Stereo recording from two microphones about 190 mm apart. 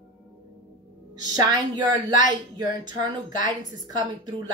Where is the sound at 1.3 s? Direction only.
20° right (ahead or behind).